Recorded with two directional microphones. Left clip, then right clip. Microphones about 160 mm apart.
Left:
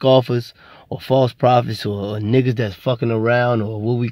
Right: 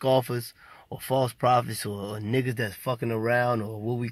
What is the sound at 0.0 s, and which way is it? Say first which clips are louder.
Speech: left 9 dB; 30° left (ahead or behind).